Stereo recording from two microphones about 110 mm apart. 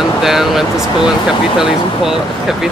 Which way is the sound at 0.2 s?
5° right (ahead or behind).